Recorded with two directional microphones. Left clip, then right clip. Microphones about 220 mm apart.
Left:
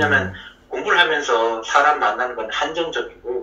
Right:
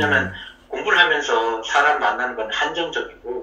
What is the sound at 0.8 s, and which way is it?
A man's voice, 5° left (ahead or behind).